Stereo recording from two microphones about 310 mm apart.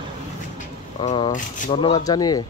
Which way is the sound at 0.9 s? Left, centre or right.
Centre.